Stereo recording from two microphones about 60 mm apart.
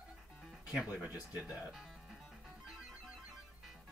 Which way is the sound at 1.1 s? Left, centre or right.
Centre.